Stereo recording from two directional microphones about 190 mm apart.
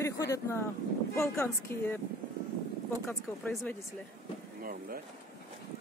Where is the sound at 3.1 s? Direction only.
15° left (ahead or behind).